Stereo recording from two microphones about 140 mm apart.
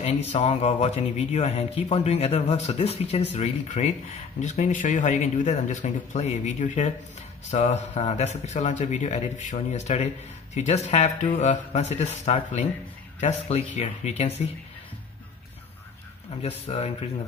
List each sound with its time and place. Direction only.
0.0 s speech: 45° left (ahead or behind)
7.5 s speech: 50° left (ahead or behind)
16.4 s speech: 50° left (ahead or behind)